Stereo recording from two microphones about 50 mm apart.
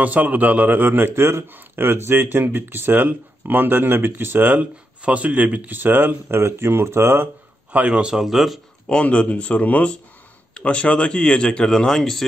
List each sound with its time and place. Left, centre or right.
0.0 s a man's voice: right
1.5 s speech: right
4.6 s speech: right
5.8 s a man's voice: right
6.2 s speech: right
7.7 s speech: right; by 8.5 s centre
8.8 s speech: left; by 12.3 s centre